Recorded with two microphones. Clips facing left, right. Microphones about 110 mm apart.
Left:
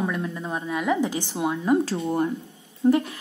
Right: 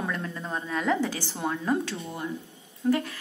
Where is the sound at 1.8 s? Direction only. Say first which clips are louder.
Left 9 dB; 30° left (ahead or behind).